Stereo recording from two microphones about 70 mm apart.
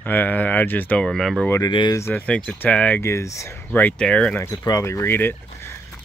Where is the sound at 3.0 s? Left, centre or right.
Left.